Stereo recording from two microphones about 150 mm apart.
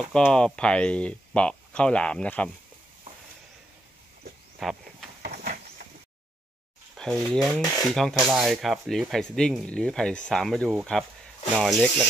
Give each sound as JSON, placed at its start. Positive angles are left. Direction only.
{"t": 0.1, "sound": "speech", "side_deg": 5}
{"t": 4.6, "sound": "speech", "side_deg": 0}
{"t": 5.2, "sound": "a sound", "side_deg": -90}
{"t": 7.0, "sound": "speech", "side_deg": 5}